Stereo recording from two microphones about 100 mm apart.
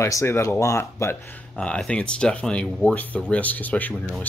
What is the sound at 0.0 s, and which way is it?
Speech, 30° left (ahead or behind).